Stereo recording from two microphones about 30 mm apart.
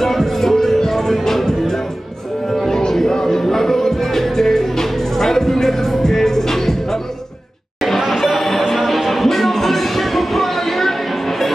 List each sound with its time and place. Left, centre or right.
0.0 s music: centre
2.5 s a sound: centre
2.9 s music: centre
8.3 s music: centre